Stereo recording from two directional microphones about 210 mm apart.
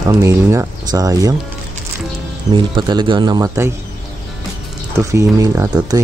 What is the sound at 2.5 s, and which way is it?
Speech, 20° right (ahead or behind).